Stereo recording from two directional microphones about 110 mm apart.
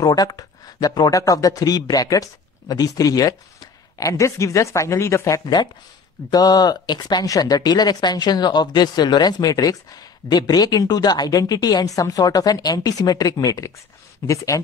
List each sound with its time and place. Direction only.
0.0 s speech: 35° left (ahead or behind)
6.3 s speech: 40° left (ahead or behind)